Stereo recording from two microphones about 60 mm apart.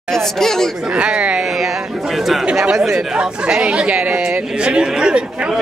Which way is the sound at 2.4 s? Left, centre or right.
Centre.